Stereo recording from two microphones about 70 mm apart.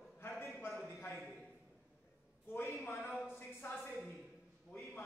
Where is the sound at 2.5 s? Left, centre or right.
Left.